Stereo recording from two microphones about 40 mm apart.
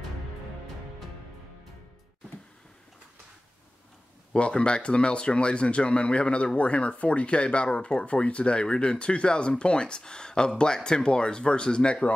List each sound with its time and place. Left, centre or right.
4.3 s speech: left